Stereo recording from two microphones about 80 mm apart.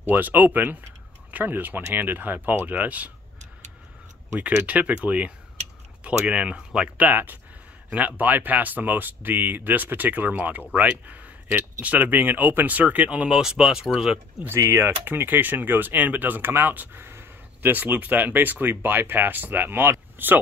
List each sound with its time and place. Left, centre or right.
0.0 s speech: right
4.4 s speech: centre
7.1 s speech: right; by 14.2 s centre
14.5 s speech: right